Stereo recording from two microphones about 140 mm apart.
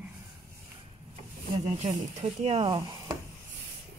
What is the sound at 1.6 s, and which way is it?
Speech, 45° right (ahead or behind).